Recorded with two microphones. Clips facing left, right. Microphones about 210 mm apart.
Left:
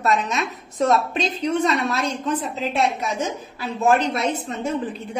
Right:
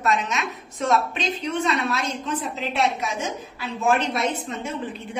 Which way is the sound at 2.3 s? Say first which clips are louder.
Left 3 dB; 40° left (ahead or behind).